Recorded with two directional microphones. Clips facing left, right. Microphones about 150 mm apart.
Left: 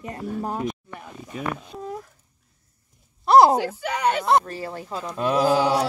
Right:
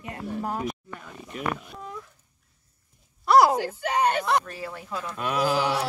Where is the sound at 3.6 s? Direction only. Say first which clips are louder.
Even; 90° left.